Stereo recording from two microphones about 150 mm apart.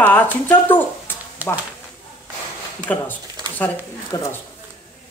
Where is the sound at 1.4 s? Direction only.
10° right (ahead or behind).